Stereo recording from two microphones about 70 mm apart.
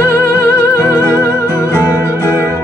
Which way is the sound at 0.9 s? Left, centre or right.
Right.